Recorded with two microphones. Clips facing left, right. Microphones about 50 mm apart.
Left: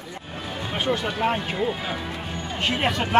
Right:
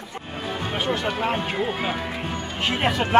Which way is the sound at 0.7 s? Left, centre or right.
Centre.